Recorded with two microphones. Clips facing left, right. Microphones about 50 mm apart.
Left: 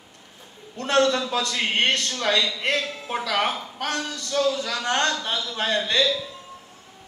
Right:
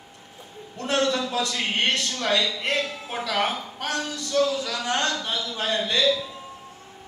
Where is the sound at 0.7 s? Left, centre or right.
Left.